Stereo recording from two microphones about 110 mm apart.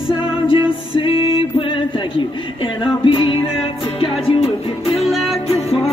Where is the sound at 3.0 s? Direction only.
50° left (ahead or behind).